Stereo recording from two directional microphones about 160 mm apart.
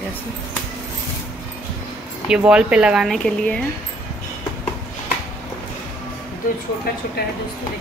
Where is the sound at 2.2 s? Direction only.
5° right (ahead or behind).